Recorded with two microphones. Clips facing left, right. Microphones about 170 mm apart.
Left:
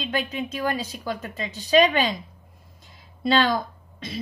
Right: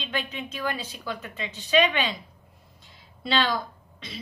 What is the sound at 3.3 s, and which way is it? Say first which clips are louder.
Speech: left 5 dB; 45° left (ahead or behind).